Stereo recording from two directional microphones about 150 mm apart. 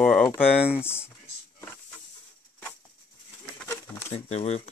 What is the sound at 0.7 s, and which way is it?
Speech, 15° left (ahead or behind).